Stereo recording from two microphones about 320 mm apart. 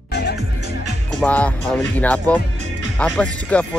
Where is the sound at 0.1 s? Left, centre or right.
Left.